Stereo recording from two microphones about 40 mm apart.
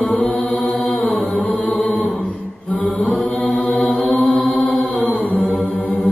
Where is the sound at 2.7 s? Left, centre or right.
Left.